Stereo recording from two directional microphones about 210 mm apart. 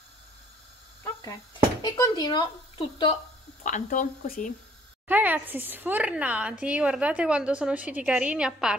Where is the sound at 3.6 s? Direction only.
35° left (ahead or behind).